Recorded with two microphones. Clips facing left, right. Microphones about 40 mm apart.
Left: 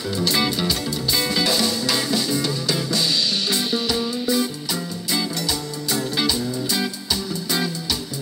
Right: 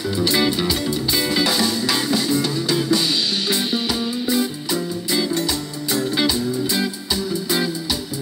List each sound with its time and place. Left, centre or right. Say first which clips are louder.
0.2 s music: right 3 dB; right
6.1 s music: right 3 dB; right